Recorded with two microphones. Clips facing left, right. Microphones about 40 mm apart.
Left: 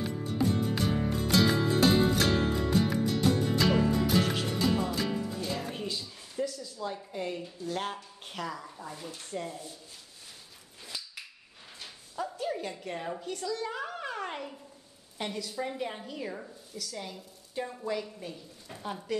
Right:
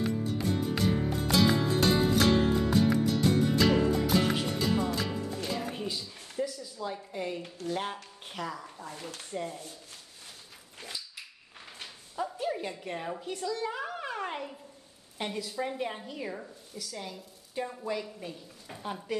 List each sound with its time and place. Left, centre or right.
0.0 s music: centre
4.2 s music: centre
4.6 s music: centre
5.9 s a sound: centre
6.8 s a woman's voice: centre
12.2 s a woman's voice: centre
13.7 s music: centre
15.1 s a woman's voice: centre